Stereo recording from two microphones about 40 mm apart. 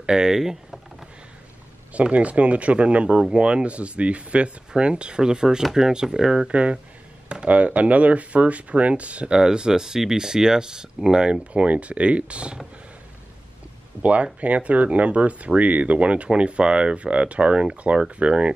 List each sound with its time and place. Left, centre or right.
0.0 s speech: centre
2.0 s speech: right; by 6.5 s centre
6.5 s speech: right
9.3 s speech: centre
14.4 s speech: right